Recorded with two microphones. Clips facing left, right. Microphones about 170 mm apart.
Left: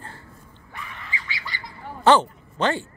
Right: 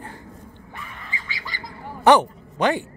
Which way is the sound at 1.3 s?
45° right (ahead or behind).